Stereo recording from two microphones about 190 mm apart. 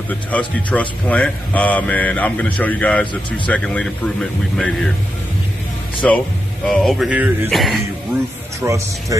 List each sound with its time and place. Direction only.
0.3 s speech: 5° left (ahead or behind)
5.9 s speech: 5° left (ahead or behind)
8.5 s speech: 15° right (ahead or behind)